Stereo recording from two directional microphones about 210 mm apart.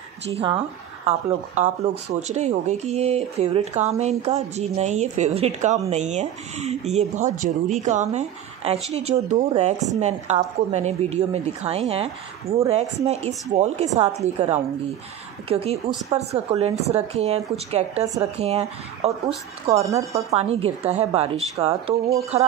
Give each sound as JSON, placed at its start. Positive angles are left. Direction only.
{"t": 0.3, "sound": "speech", "side_deg": -25}